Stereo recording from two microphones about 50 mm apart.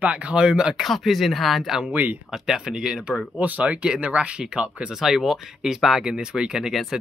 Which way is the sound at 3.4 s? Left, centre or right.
Right.